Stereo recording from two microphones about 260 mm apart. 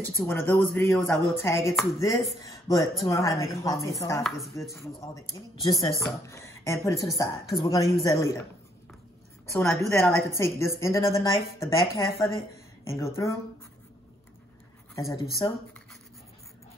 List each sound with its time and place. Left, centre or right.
0.2 s speech: centre
9.5 s speech: centre
15.0 s speech: centre